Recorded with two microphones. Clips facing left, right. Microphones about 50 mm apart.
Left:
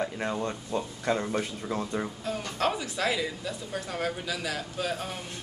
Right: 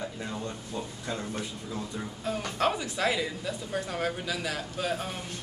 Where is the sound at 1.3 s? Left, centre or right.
Left.